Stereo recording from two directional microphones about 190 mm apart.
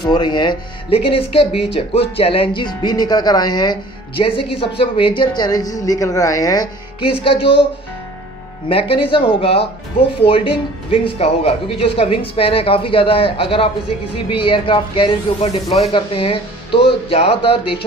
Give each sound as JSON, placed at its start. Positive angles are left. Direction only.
{"t": 0.0, "sound": "speech", "side_deg": 25}
{"t": 8.6, "sound": "speech", "side_deg": 30}